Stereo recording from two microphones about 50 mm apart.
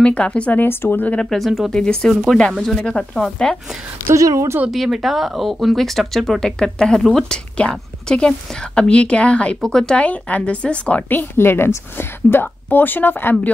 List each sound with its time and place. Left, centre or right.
0.0 s a woman's voice: left
0.7 s a woman's voice: left
1.2 s speech: centre
1.7 s a woman's voice: centre
4.1 s a woman's voice: right
4.6 s a woman's voice: centre; by 9.6 s left
9.6 s a woman's voice: centre
10.0 s a woman's voice: left
11.1 s a woman's voice: left